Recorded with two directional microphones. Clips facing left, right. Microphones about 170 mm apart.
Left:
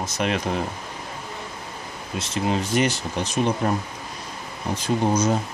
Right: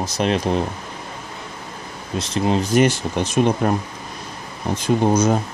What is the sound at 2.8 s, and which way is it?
Speech, 50° right (ahead or behind).